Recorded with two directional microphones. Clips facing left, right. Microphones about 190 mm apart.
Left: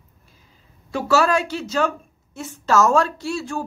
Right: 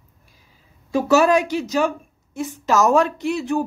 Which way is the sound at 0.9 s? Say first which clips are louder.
Right 3 dB; 15° right (ahead or behind).